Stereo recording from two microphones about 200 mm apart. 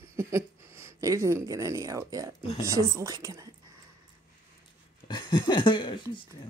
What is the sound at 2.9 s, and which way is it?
Speech, 15° right (ahead or behind).